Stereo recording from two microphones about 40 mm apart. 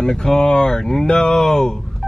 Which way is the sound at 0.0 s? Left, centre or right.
Centre.